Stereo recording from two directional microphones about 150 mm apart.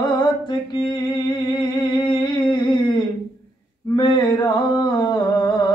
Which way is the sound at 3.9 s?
30° left (ahead or behind).